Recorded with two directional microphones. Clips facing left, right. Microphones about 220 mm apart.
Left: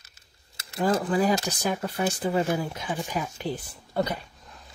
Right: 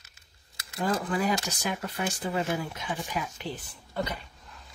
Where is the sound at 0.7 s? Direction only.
30° left (ahead or behind).